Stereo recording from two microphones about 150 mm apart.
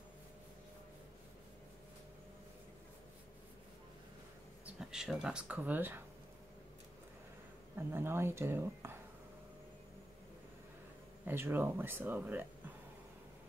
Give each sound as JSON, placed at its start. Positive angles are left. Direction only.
{"t": 4.7, "sound": "speech", "side_deg": -5}
{"t": 7.7, "sound": "speech", "side_deg": -15}
{"t": 11.2, "sound": "speech", "side_deg": -15}